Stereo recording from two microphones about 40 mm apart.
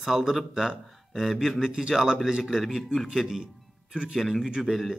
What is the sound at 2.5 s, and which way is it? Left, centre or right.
Speech, centre.